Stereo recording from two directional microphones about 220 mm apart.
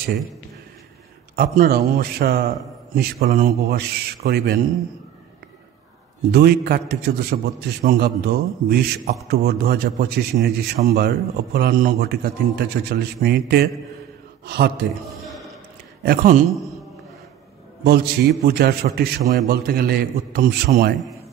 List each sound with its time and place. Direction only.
1.3 s a man's voice: 40° right (ahead or behind)
6.3 s a man's voice: 45° right (ahead or behind)
16.0 s a man's voice: 40° right (ahead or behind)
17.8 s a man's voice: 45° right (ahead or behind)